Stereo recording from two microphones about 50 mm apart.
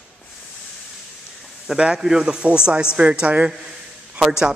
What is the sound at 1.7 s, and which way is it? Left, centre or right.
A woman's voice, centre.